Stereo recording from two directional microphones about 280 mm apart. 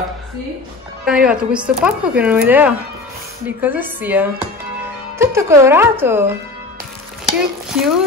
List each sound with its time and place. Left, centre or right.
1.0 s speech: centre
7.3 s speech: centre